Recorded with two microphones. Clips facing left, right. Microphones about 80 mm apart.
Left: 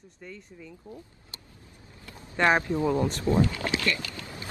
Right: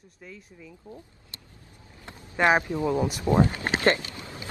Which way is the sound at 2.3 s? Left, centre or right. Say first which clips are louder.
Right 1 dB; centre.